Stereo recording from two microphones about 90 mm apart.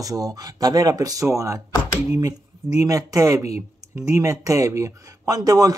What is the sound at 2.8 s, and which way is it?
Speech, 40° right (ahead or behind).